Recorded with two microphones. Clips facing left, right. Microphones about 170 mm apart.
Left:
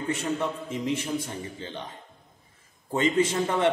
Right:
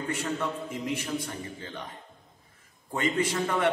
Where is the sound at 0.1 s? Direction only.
25° left (ahead or behind).